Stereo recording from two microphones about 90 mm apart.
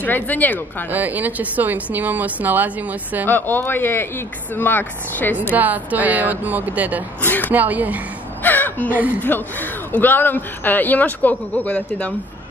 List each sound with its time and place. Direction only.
0.0 s speech: 20° left (ahead or behind)
0.9 s speech: 20° right (ahead or behind)
3.3 s speech: 20° left (ahead or behind)
5.5 s speech: 20° right (ahead or behind)
7.2 s speech: 20° left (ahead or behind)
7.5 s speech: 20° right (ahead or behind)
8.5 s a sound: 20° left (ahead or behind)
9.3 s speech: 20° left (ahead or behind)